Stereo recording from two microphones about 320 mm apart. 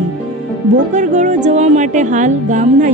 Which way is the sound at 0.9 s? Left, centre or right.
Right.